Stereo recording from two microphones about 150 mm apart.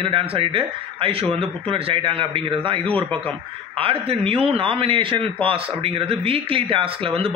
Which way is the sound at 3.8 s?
40° right (ahead or behind).